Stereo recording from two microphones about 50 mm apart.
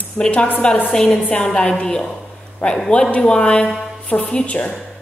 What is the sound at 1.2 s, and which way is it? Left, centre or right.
A woman's voice, left.